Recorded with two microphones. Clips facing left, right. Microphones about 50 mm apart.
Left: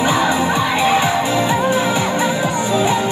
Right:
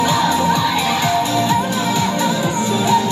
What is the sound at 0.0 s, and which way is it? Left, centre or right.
Music, left.